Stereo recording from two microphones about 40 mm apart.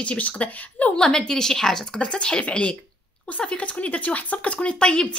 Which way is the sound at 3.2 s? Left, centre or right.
Left.